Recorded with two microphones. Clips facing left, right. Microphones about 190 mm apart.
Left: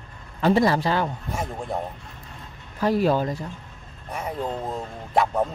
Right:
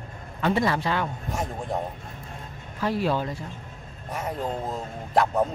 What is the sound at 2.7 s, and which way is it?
Speech, 45° left (ahead or behind).